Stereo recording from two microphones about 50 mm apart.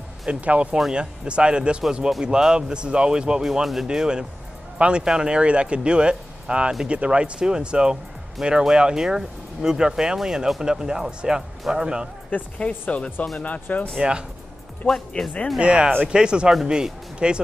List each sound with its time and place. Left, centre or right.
0.3 s speech: right
12.3 s speech: left
13.9 s speech: centre
14.9 s speech: centre
15.6 s speech: centre